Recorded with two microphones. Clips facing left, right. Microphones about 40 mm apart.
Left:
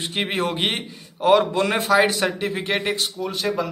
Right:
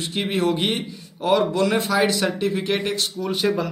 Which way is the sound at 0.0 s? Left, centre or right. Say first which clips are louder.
Right 1 dB; left.